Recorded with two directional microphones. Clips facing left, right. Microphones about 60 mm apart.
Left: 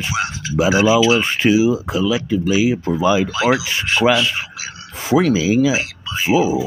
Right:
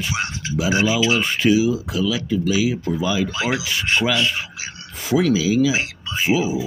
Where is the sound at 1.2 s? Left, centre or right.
Left.